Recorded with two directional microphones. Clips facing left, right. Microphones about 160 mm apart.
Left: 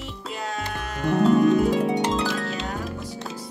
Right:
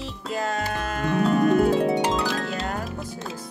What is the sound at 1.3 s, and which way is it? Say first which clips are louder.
Harp: right 1 dB; 55° right (ahead or behind).